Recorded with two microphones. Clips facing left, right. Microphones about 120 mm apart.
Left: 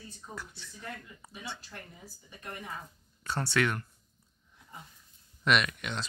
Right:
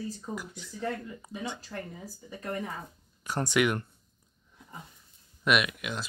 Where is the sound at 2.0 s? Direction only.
35° right (ahead or behind).